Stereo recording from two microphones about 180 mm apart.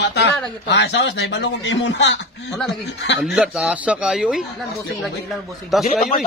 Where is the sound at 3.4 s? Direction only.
5° right (ahead or behind).